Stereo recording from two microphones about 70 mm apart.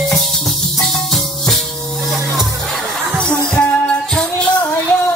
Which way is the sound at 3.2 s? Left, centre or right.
Centre.